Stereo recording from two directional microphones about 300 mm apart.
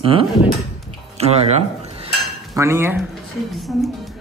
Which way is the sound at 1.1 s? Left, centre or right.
Right.